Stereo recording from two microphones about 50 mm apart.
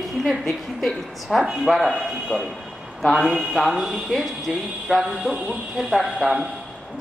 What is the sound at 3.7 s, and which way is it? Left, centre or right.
A woman's voice, centre.